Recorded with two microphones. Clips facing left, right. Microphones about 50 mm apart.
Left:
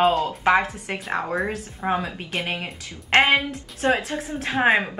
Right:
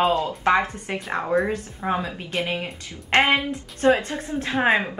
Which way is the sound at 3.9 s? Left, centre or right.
Centre.